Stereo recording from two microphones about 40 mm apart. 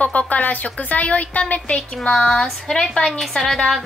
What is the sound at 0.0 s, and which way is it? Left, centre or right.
A woman's voice, left.